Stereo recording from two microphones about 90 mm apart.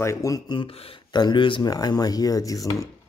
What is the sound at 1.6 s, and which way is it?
Speech, 45° left (ahead or behind).